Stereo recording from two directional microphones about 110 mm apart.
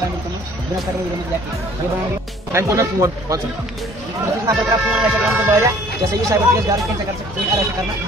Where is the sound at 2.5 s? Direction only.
30° right (ahead or behind).